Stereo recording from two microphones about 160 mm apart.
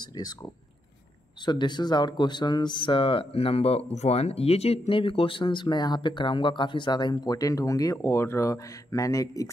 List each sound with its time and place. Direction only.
1.4 s speech: 30° left (ahead or behind)